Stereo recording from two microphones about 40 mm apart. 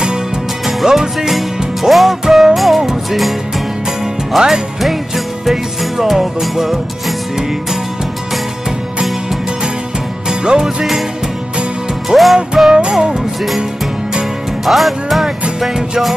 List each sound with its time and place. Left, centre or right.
0.8 s music: centre
4.4 s music: centre
10.4 s music: centre
12.1 s music: centre
12.7 s music: centre
14.6 s music: centre
15.6 s music: centre